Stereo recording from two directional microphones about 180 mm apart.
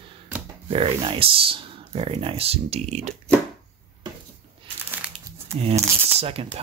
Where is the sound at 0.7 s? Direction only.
30° right (ahead or behind).